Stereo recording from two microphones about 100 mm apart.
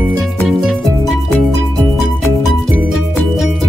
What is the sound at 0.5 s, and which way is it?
Music, centre (ahead or behind).